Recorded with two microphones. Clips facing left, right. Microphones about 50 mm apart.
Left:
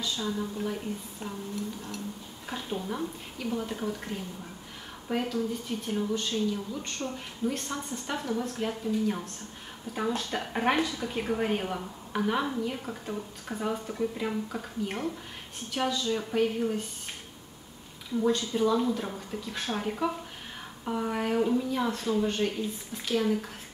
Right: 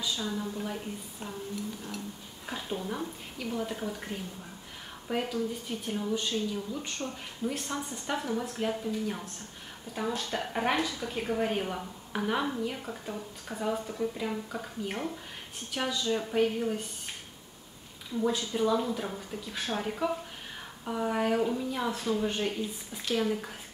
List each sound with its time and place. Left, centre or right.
0.0 s a woman's voice: centre
18.3 s a woman's voice: centre